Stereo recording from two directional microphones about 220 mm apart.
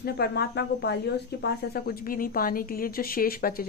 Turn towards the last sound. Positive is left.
turn(degrees=40)  # may be behind; listen again after turning